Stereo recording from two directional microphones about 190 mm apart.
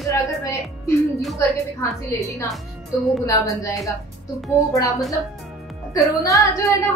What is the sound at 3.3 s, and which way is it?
Speech, 15° left (ahead or behind).